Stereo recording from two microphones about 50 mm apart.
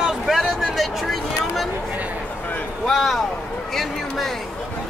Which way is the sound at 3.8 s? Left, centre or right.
Centre.